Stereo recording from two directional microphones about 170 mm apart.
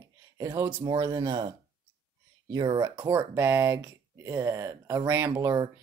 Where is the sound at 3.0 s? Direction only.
10° right (ahead or behind).